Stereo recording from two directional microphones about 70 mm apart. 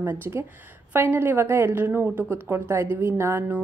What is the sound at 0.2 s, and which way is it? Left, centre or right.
A woman's voice, right.